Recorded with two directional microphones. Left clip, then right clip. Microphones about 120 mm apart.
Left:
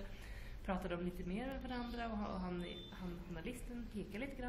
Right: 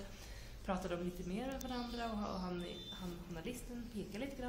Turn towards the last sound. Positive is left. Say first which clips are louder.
# right 1 dB
turn(degrees=-10)  # may be behind; listen again after turning